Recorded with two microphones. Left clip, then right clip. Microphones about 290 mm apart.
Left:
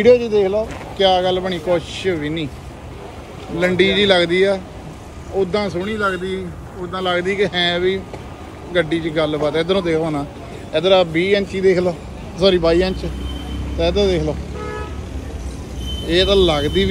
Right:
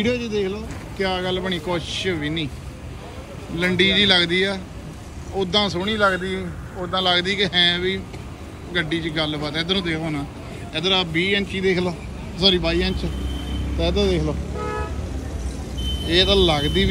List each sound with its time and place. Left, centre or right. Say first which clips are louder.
0.0 s speech: left 10 dB; centre
1.8 s speech: left 1 dB; right
2.0 s speech: left 4 dB; centre
3.5 s speech: left 3 dB; centre
13.7 s vehicle: left 5 dB; centre
16.1 s speech: left 3 dB; centre